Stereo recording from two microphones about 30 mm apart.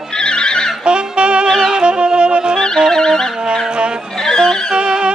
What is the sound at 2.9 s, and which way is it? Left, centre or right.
Music, left.